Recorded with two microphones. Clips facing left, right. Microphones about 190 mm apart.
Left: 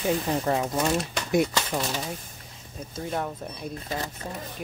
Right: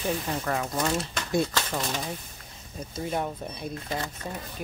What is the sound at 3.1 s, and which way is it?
Speech, 10° right (ahead or behind).